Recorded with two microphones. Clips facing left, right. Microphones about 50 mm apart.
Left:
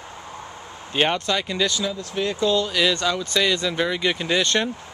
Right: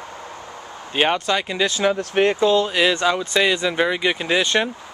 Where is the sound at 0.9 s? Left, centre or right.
Centre.